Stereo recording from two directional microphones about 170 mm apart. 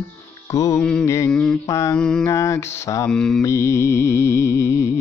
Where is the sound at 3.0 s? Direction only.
5° left (ahead or behind).